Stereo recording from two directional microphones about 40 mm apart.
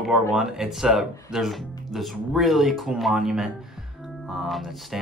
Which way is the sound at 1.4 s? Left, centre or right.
Centre.